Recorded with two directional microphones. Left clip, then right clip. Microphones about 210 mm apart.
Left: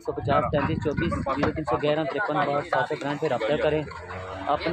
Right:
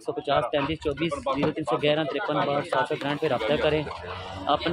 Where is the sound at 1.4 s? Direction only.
30° right (ahead or behind).